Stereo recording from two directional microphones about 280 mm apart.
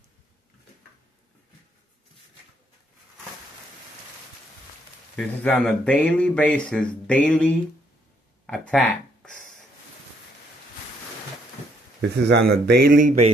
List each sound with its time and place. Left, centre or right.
5.1 s speech: centre
8.5 s a sound: centre
12.0 s speech: right